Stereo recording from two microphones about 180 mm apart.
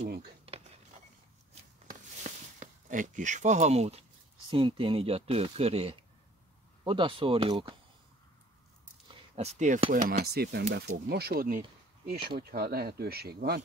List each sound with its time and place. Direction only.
1.9 s a sound: 45° right (ahead or behind)
4.5 s speech: 30° right (ahead or behind)
9.3 s speech: 35° right (ahead or behind); by 13.6 s 60° right (ahead or behind)